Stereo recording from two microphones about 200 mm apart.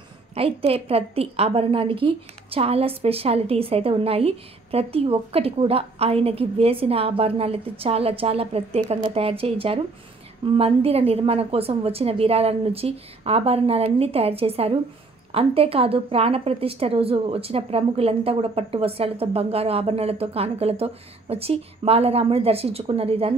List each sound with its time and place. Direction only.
0.3 s a woman's voice: 30° right (ahead or behind)